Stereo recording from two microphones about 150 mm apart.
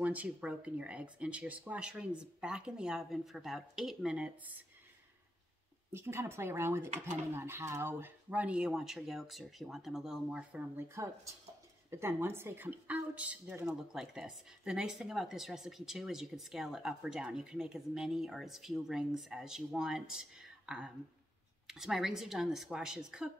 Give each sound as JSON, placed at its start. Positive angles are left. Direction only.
{"t": 0.0, "sound": "speech", "side_deg": -10}
{"t": 5.9, "sound": "a woman's voice", "side_deg": -15}